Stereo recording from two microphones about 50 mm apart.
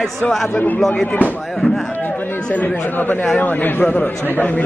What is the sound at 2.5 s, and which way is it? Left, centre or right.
A man's voice, left.